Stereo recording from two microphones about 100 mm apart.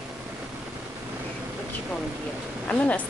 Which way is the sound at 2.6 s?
15° left (ahead or behind).